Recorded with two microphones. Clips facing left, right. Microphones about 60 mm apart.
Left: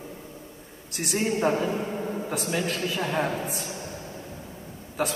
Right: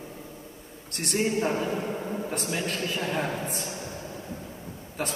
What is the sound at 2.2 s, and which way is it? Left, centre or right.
Speech, left.